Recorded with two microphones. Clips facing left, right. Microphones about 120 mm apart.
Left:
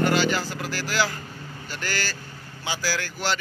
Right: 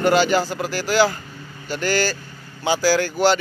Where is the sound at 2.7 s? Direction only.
35° right (ahead or behind).